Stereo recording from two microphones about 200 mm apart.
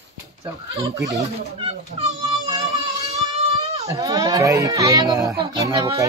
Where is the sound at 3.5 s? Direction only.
30° right (ahead or behind).